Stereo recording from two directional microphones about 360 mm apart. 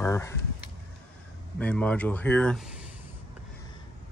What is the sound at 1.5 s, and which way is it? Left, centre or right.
Speech, centre.